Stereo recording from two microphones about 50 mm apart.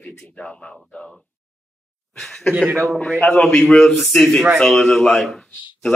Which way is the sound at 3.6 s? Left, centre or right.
Centre.